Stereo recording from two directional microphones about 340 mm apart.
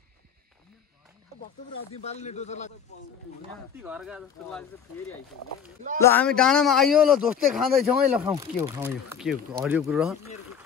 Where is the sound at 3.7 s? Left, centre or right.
Centre.